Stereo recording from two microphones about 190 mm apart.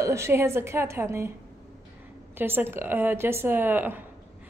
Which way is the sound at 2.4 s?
10° right (ahead or behind).